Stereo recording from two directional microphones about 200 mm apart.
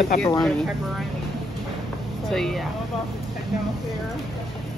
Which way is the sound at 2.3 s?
Centre (ahead or behind).